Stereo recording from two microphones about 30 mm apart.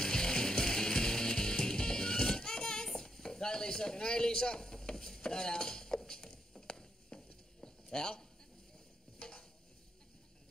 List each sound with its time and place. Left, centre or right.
0.0 s music: left
3.0 s stir: centre
7.1 s clip-clop: left
7.6 s a sound: left
9.2 s stir: left